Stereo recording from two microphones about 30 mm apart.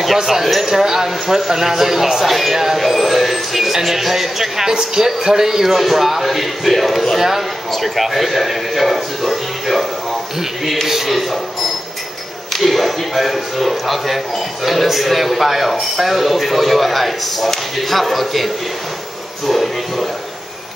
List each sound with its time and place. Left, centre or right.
0.2 s a man's voice: centre
12.5 s speech: centre